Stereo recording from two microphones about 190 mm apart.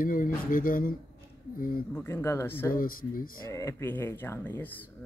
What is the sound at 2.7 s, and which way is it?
Speech, 50° left (ahead or behind).